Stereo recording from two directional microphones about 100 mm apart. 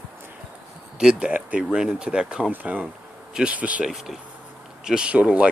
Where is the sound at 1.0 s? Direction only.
10° right (ahead or behind).